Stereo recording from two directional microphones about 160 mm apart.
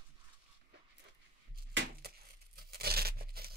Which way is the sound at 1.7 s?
90° right.